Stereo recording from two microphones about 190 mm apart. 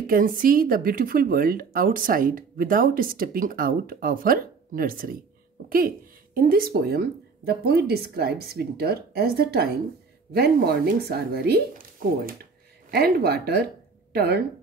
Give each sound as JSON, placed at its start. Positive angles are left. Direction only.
{"t": 0.0, "sound": "a woman's voice", "side_deg": -50}
{"t": 12.9, "sound": "speech", "side_deg": -55}